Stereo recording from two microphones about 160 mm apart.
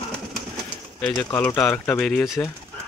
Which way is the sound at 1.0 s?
10° left (ahead or behind).